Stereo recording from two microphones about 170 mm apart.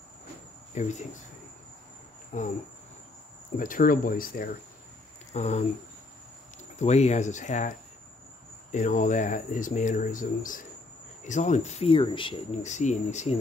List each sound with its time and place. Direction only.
0.7 s speech: 45° left (ahead or behind)
2.3 s speech: 50° left (ahead or behind)
3.5 s speech: 50° left (ahead or behind)
5.3 s speech: 40° left (ahead or behind)
6.8 s speech: 40° left (ahead or behind)
8.7 s speech: 45° left (ahead or behind); by 12.5 s 30° left (ahead or behind)
12.6 s speech: 45° left (ahead or behind)